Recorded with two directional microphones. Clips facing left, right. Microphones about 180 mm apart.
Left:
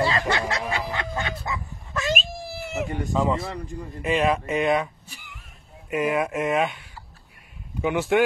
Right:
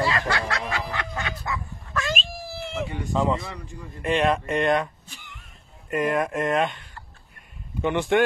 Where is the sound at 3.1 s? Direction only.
Centre (ahead or behind).